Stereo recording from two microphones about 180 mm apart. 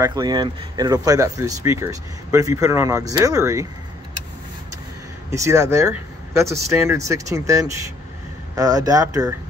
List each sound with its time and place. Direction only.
0.0 s speech: 20° right (ahead or behind)
5.3 s speech: 15° right (ahead or behind)